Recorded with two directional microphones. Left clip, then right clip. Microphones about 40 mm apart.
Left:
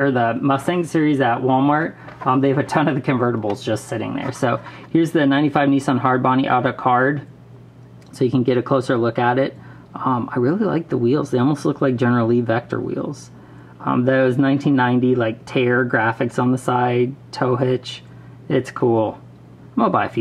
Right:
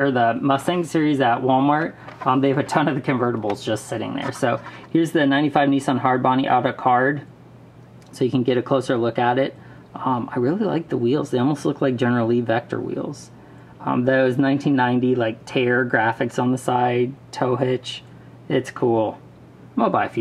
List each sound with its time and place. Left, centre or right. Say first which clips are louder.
0.0 s speech: even; centre
2.8 s speech: left 2 dB; centre